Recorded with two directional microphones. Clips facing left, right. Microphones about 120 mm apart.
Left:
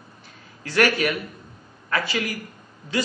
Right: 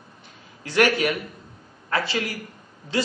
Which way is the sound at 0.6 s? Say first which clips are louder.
Right 1 dB; 20° right (ahead or behind).